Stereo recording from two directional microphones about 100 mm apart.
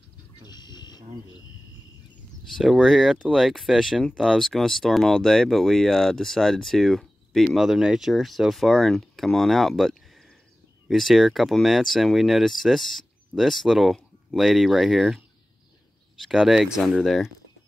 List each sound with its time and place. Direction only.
0.4 s a sound: 45° left (ahead or behind)
2.5 s speech: centre (ahead or behind)
16.3 s speech: 5° right (ahead or behind)